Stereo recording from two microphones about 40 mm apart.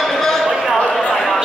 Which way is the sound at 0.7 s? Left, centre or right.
Left.